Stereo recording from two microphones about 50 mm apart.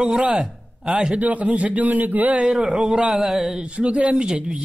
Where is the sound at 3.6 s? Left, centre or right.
Right.